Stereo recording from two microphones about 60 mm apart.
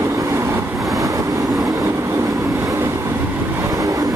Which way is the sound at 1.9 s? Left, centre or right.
Right.